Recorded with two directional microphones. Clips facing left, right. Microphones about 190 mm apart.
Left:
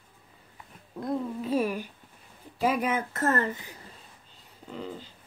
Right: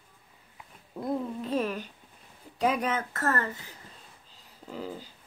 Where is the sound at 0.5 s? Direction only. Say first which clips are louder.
Even; 5° right (ahead or behind).